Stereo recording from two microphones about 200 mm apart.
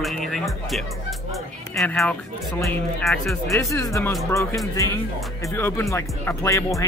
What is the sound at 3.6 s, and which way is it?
Speech, 15° left (ahead or behind).